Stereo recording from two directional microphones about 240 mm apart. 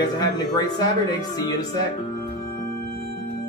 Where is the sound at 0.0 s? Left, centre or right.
Centre.